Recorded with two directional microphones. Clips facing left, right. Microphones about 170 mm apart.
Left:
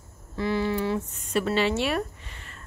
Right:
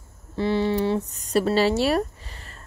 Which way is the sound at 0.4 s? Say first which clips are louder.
Right 4 dB; 30° right (ahead or behind).